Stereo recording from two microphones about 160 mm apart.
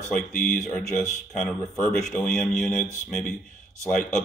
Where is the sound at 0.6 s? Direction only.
5° left (ahead or behind).